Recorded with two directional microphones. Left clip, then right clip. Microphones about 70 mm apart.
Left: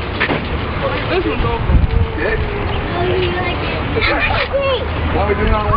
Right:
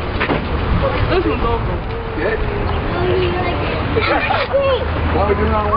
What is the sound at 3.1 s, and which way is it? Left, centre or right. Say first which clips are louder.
Speech: right 1 dB; centre.